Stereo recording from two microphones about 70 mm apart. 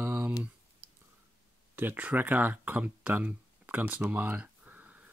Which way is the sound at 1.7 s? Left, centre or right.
Right.